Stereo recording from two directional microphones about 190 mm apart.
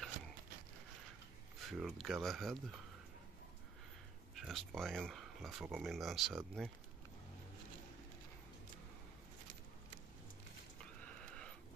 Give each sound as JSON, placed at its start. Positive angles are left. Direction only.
{"t": 1.7, "sound": "speech", "side_deg": 0}
{"t": 4.4, "sound": "speech", "side_deg": 0}
{"t": 11.1, "sound": "a sound", "side_deg": 5}